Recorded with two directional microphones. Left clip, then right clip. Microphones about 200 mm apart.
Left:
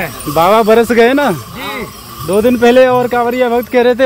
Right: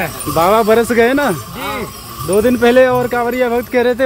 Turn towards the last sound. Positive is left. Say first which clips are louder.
# left 4 dB
turn(degrees=20)  # may be behind; listen again after turning